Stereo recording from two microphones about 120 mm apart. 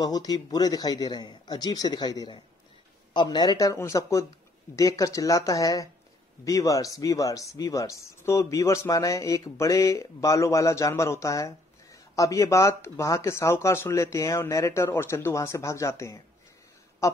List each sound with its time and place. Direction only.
0.0 s speech: 35° left (ahead or behind)